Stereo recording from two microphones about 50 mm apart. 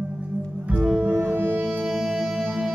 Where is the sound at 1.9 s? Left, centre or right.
Centre.